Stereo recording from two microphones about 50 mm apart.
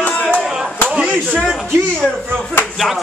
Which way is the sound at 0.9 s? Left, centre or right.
Right.